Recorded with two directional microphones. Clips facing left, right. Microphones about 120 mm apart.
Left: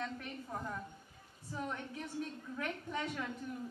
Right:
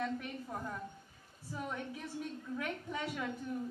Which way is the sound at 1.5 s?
Centre (ahead or behind).